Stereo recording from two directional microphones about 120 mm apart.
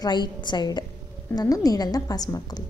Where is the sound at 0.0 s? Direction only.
35° left (ahead or behind).